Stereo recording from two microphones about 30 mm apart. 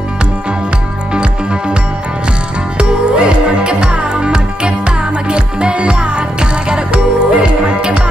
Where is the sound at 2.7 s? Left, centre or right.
Right.